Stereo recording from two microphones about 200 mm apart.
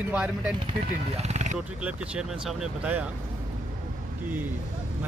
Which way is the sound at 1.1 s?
35° right (ahead or behind).